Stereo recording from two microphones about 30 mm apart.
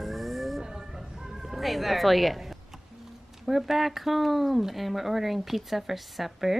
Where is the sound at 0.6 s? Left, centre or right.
Centre.